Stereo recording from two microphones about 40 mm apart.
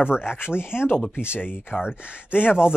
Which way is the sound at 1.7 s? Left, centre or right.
Left.